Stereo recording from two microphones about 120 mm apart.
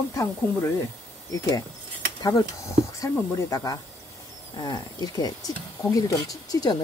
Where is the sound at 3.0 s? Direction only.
25° left (ahead or behind).